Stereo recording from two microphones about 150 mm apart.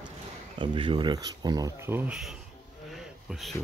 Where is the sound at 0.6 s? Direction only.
35° right (ahead or behind); by 2.1 s 15° right (ahead or behind).